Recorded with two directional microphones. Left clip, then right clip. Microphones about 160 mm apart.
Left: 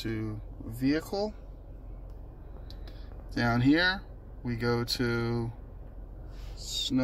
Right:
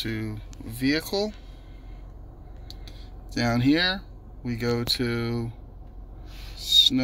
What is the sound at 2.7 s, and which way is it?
Speech, 20° right (ahead or behind).